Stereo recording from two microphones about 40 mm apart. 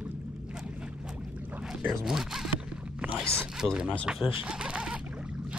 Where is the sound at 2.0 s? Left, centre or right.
Centre.